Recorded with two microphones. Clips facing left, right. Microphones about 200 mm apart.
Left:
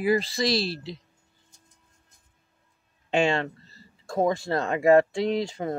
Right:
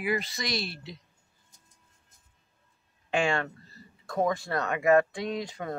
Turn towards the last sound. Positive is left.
turn(degrees=25)  # may be behind; listen again after turning